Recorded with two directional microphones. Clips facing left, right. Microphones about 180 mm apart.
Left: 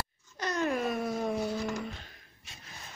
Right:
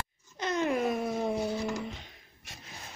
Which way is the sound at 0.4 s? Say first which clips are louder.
Right 2 dB; 20° right (ahead or behind).